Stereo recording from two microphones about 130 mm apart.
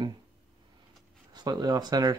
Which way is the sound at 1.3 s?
30° right (ahead or behind).